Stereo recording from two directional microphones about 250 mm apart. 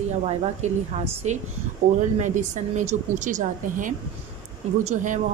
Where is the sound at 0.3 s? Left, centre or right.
Right.